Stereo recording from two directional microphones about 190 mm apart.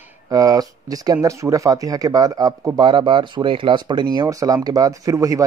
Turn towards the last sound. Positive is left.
turn(degrees=-15)  # may be behind; listen again after turning